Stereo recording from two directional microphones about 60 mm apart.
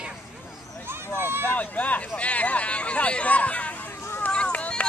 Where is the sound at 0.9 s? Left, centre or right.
Right.